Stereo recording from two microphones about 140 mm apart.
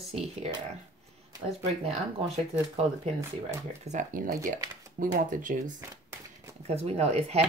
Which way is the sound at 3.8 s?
70° right (ahead or behind).